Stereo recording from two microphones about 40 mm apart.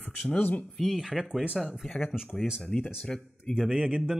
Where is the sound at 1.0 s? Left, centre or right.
Centre.